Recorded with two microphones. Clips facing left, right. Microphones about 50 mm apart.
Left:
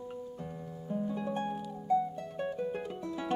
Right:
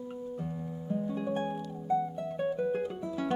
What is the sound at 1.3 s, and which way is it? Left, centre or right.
Music, right.